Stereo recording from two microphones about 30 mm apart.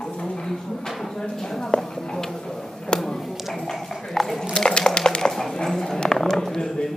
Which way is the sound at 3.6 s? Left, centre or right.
Centre.